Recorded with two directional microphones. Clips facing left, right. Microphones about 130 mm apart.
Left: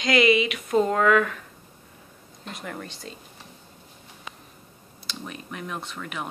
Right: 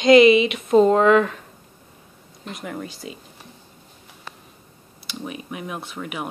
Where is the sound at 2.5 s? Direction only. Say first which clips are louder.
Right 4 dB; 5° right (ahead or behind).